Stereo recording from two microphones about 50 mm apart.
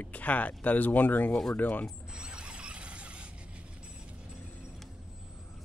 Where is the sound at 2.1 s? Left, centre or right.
Centre.